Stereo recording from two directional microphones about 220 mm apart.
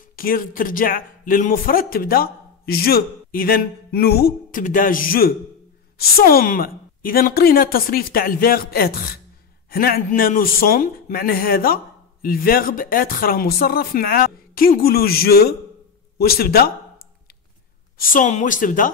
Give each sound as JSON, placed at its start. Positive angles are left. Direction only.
{"t": 0.1, "sound": "speech", "side_deg": 40}
{"t": 17.9, "sound": "speech", "side_deg": 40}